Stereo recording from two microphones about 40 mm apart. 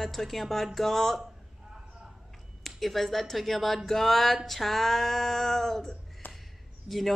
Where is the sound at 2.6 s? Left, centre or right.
Centre.